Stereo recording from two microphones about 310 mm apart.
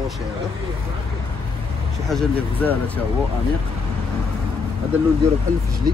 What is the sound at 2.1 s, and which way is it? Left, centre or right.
Speech, centre.